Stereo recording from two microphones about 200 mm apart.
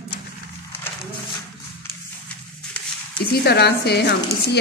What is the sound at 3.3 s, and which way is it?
Speech, 55° left (ahead or behind).